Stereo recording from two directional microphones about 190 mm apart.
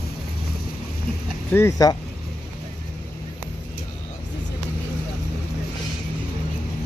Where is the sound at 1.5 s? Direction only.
15° left (ahead or behind).